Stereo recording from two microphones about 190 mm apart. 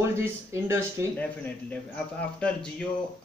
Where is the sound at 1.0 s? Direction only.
15° right (ahead or behind).